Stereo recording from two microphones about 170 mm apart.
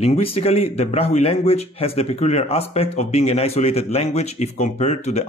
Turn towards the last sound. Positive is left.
turn(degrees=40)  # may be behind; listen again after turning